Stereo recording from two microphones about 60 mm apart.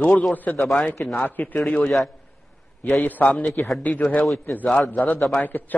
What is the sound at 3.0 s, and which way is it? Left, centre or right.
A man's voice, left.